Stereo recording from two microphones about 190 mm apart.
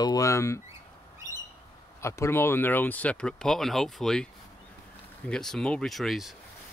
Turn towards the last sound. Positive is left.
turn(degrees=0)  # may be behind; listen again after turning